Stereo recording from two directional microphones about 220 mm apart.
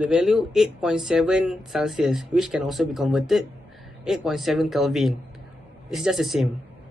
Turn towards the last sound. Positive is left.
turn(degrees=0)  # may be behind; listen again after turning